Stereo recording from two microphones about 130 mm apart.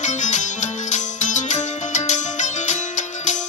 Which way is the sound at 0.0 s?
65° left (ahead or behind).